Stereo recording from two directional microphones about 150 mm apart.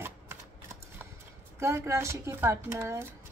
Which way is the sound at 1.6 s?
20° right (ahead or behind).